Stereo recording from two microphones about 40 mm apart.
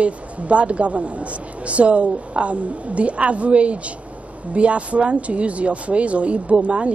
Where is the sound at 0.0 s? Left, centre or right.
Right.